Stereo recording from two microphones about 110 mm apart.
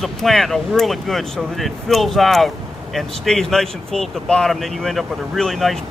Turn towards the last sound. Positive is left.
turn(degrees=0)  # may be behind; listen again after turning